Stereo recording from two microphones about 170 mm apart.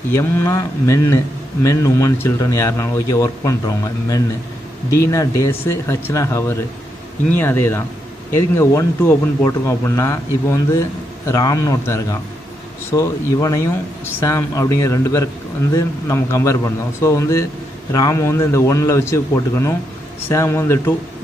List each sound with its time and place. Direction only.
0.1 s a man's voice: 15° left (ahead or behind)